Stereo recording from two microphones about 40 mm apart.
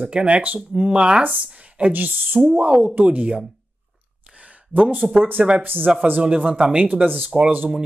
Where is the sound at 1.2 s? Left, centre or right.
Right.